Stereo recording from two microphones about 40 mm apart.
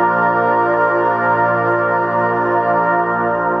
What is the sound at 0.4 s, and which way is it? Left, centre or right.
Music, left.